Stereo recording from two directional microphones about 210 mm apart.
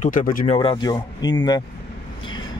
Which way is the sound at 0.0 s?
40° left (ahead or behind).